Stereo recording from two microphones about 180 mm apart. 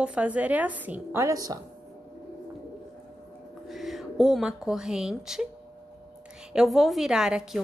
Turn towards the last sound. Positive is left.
turn(degrees=-5)  # may be behind; listen again after turning